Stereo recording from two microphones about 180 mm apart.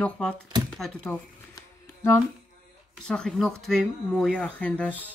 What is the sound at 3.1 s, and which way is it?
Speech, 5° left (ahead or behind).